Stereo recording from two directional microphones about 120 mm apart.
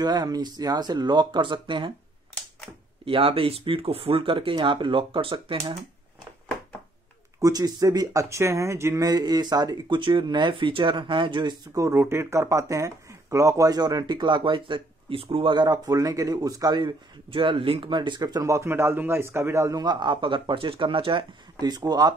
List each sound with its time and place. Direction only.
0.0 s speech: 35° right (ahead or behind)
3.1 s speech: 50° right (ahead or behind)
7.3 s speech: 30° right (ahead or behind)
11.7 s speech: 25° right (ahead or behind); by 21.3 s 50° right (ahead or behind)
21.5 s speech: 35° right (ahead or behind)